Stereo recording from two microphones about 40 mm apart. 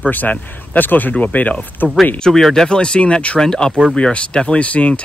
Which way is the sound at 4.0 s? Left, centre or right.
Left.